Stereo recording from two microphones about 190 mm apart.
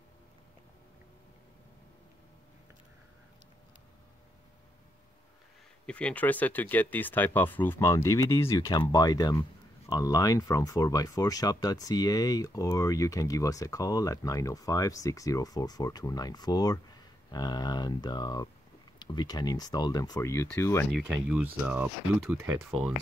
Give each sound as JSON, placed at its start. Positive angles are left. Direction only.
{"t": 5.9, "sound": "speech", "side_deg": 5}
{"t": 20.9, "sound": "speech", "side_deg": -5}